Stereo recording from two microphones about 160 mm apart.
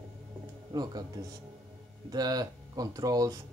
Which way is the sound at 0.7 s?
25° right (ahead or behind).